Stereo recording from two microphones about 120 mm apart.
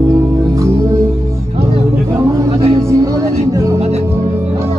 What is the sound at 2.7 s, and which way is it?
Music, 30° right (ahead or behind).